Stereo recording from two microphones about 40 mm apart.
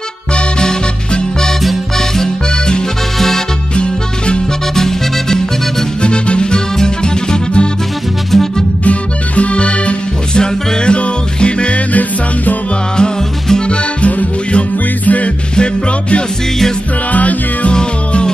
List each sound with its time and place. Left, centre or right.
0.6 s music: centre
2.0 s accordion: centre
3.7 s music: left
4.7 s music: centre
6.0 s music: left
8.3 s music: centre
8.8 s music: left
11.9 s music: left
12.9 s music: left
14.0 s music: left
15.5 s music: left
17.1 s music: left
17.7 s music: centre